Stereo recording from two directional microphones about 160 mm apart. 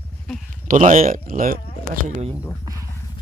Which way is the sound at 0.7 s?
50° right (ahead or behind).